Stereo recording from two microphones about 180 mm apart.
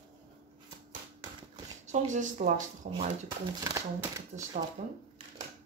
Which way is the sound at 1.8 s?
40° right (ahead or behind).